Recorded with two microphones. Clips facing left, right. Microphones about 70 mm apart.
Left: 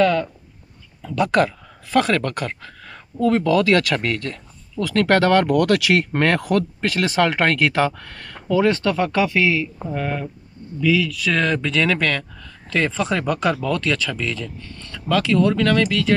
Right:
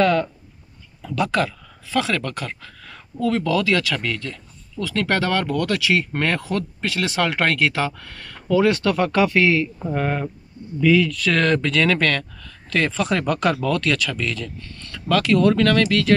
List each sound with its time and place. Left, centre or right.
0.0 s speech: centre
1.2 s speech: left
8.4 s speech: left
8.9 s speech: centre
9.8 s speech: centre
10.9 s speech: centre
11.2 s speech: centre